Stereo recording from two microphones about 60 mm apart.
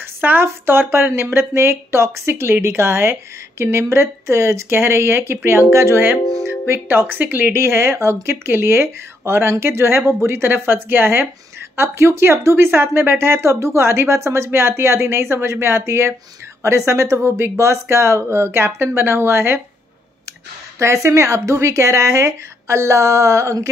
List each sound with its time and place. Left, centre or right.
0.0 s speech: right
7.5 s speech: right
20.8 s speech: right